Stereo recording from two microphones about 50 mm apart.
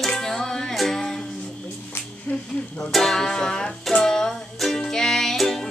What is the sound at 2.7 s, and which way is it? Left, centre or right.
Music, centre.